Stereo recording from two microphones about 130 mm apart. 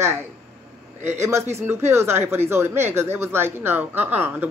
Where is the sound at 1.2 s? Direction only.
20° right (ahead or behind).